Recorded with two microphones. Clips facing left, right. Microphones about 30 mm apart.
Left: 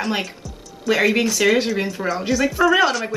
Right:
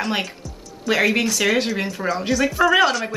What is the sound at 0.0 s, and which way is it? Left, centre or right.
A woman's voice, centre.